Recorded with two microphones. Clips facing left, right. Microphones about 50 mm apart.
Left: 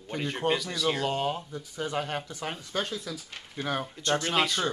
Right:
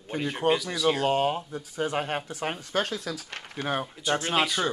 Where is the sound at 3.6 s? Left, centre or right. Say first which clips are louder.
Right 2 dB; centre.